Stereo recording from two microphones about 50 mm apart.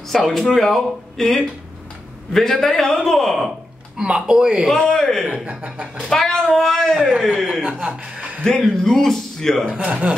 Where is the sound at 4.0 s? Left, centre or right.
Centre.